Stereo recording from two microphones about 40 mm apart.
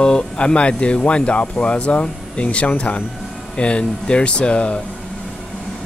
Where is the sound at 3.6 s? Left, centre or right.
Left.